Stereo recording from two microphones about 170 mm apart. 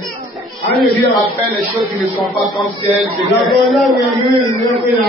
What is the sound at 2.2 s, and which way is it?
Speech, centre (ahead or behind).